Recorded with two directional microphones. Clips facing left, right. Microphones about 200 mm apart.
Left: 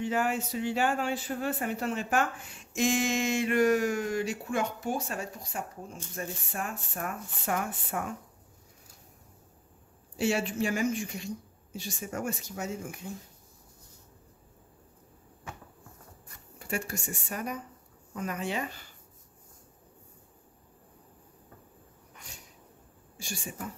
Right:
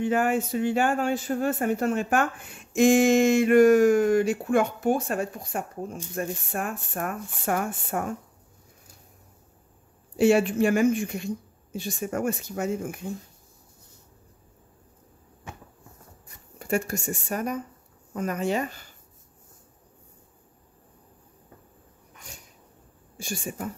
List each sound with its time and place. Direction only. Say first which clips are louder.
0.0 s speech: right 6 dB; 50° right (ahead or behind)
10.1 s a woman's voice: right 9 dB; 55° right (ahead or behind)
16.5 s speech: right 8 dB; 45° right (ahead or behind)
23.2 s speech: right 6 dB; 50° right (ahead or behind)